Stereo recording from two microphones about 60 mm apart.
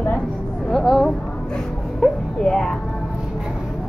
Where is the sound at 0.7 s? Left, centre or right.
Centre.